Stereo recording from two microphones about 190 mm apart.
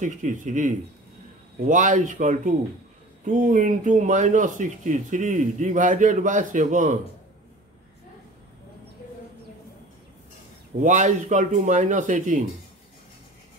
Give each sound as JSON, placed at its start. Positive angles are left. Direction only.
{"t": 0.0, "sound": "speech", "side_deg": -40}
{"t": 10.8, "sound": "speech", "side_deg": -40}